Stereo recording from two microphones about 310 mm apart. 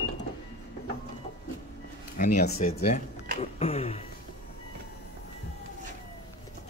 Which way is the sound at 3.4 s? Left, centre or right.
Centre.